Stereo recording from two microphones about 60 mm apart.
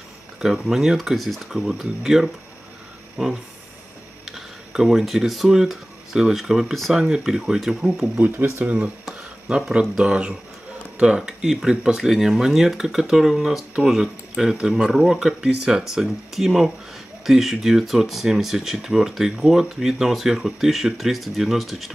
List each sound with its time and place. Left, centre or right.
0.4 s speech: centre
8.6 s speech: right
9.5 s speech: centre